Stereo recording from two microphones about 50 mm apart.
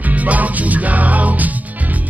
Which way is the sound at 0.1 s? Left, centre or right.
Right.